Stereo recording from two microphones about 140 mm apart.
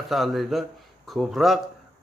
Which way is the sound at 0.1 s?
Centre (ahead or behind).